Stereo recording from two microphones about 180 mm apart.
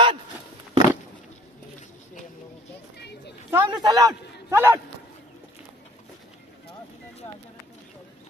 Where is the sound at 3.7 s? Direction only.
20° right (ahead or behind).